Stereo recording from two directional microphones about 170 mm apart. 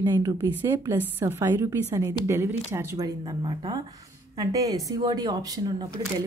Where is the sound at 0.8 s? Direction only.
15° right (ahead or behind).